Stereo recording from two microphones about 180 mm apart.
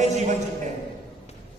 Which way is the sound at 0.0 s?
40° right (ahead or behind).